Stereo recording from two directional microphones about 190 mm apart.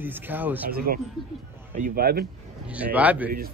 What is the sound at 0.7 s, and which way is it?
Speech, 55° right (ahead or behind).